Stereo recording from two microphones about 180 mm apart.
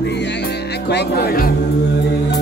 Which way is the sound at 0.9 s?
65° left (ahead or behind).